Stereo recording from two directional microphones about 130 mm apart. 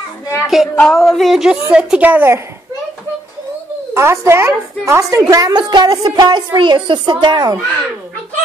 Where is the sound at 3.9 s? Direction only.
20° right (ahead or behind); by 7.5 s 35° right (ahead or behind).